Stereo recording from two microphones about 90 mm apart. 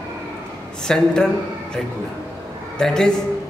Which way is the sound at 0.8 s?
10° left (ahead or behind).